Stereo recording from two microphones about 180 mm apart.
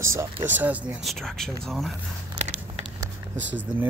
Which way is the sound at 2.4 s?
40° right (ahead or behind).